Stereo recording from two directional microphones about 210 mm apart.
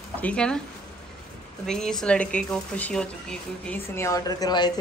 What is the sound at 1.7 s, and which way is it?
A woman's voice, 5° left (ahead or behind).